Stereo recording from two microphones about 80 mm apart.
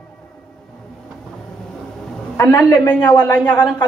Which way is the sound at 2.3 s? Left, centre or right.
Left.